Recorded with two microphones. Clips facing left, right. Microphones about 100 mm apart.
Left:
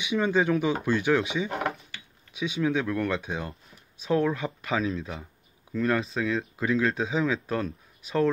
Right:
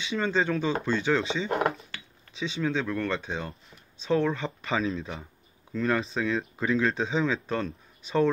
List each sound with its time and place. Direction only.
0.0 s speech: 10° left (ahead or behind)
1.5 s a sound: 45° right (ahead or behind)
2.3 s speech: 10° left (ahead or behind)